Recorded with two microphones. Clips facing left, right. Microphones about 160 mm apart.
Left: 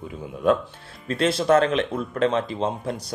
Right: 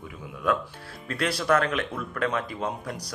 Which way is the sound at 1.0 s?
25° left (ahead or behind).